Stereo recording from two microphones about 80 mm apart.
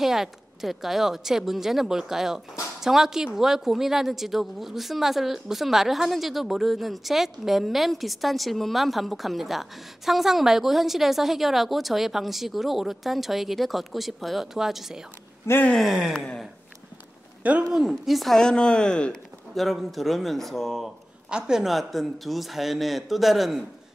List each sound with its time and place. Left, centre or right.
0.0 s speech: centre
15.5 s speech: left
15.9 s a sound: centre
17.4 s speech: centre
17.6 s a woman's voice: centre
21.3 s speech: centre